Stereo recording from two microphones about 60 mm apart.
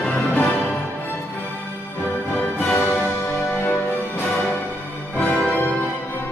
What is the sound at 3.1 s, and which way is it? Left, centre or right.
Music, left.